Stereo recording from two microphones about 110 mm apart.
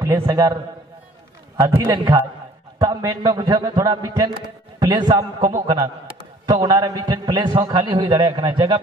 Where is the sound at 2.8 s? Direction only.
35° right (ahead or behind).